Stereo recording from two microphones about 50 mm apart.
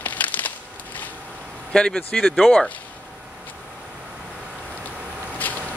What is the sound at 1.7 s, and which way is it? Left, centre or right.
Speech, centre.